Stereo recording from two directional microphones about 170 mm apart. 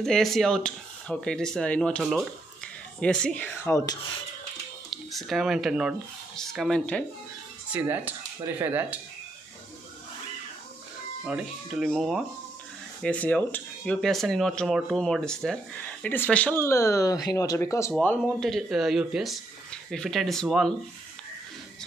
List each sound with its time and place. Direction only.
0.0 s speech: centre (ahead or behind)
3.6 s speech: 20° left (ahead or behind)
4.9 s speech: centre (ahead or behind)
7.7 s speech: 10° right (ahead or behind)
11.2 s speech: 5° right (ahead or behind)